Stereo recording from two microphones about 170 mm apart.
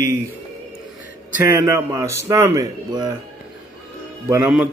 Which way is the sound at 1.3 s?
15° right (ahead or behind).